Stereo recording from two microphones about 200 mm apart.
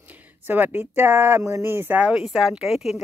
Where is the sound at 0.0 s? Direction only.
10° right (ahead or behind).